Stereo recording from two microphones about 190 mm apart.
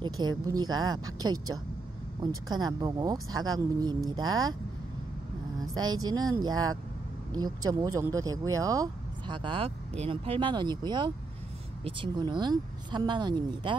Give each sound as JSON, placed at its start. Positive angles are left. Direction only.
{"t": 0.0, "sound": "speech", "side_deg": -20}
{"t": 5.6, "sound": "a sound", "side_deg": -20}
{"t": 6.0, "sound": "speech", "side_deg": -20}